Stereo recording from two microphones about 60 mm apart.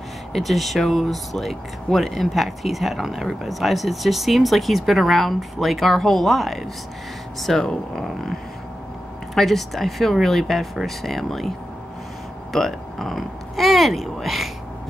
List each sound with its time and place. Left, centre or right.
0.3 s speech: centre
12.5 s speech: centre